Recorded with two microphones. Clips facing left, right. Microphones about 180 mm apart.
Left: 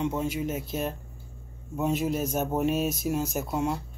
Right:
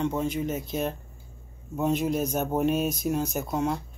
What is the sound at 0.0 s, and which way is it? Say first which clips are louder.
Speech: right 1 dB; 5° left (ahead or behind).